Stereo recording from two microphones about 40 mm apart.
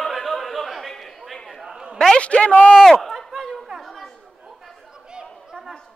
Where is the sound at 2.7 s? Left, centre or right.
Centre.